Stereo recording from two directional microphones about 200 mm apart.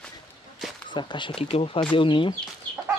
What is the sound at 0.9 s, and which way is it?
Speech, 25° left (ahead or behind).